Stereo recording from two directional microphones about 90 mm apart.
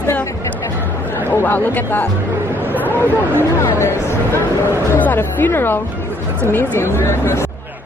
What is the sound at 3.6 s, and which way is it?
Speech, 30° left (ahead or behind).